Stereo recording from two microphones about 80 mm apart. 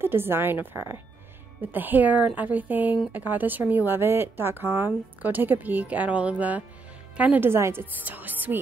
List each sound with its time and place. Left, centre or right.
0.0 s speech: right
7.4 s speech: right